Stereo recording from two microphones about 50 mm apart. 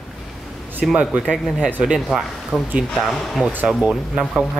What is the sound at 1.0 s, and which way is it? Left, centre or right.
Speech, right.